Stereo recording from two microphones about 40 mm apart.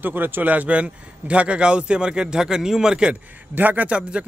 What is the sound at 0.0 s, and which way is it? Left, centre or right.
Speech, right.